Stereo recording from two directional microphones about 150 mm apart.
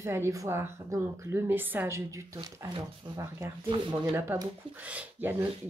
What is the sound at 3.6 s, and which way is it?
Speech, 35° right (ahead or behind).